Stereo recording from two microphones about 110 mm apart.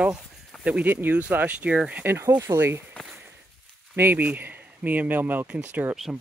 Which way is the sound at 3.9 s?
20° right (ahead or behind).